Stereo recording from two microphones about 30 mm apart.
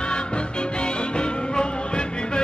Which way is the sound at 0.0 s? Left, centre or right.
Left.